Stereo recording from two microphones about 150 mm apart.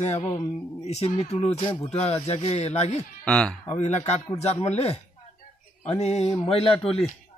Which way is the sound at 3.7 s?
50° left (ahead or behind).